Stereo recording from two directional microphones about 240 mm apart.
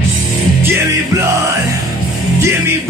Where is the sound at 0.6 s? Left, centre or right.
Centre.